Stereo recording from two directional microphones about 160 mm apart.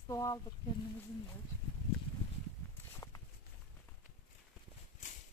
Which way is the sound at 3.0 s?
20° left (ahead or behind).